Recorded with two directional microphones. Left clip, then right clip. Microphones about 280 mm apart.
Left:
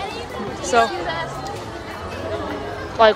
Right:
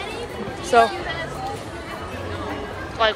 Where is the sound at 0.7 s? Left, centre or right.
Centre.